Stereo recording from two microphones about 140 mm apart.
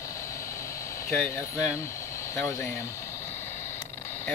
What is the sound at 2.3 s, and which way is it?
Speech, 20° left (ahead or behind).